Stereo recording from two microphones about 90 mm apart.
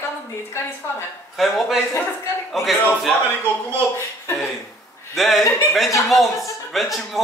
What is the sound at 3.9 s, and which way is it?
Speech, 25° left (ahead or behind).